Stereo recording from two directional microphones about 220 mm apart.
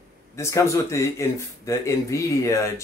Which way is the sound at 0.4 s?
15° left (ahead or behind).